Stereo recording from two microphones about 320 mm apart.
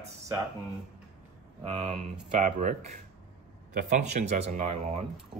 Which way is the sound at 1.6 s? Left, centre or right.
Centre.